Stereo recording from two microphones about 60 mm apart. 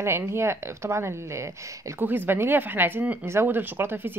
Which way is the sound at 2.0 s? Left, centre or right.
Right.